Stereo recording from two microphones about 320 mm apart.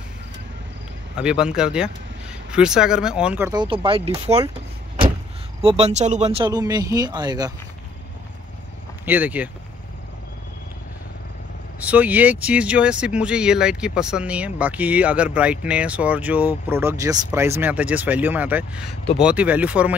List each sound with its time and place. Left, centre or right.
1.1 s speech: centre
5.6 s speech: centre
9.0 s speech: centre
11.8 s speech: centre